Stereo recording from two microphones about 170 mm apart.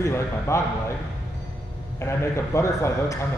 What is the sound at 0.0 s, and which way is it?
Speech, 15° left (ahead or behind).